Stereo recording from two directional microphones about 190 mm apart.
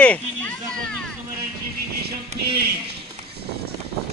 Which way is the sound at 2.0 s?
60° right (ahead or behind).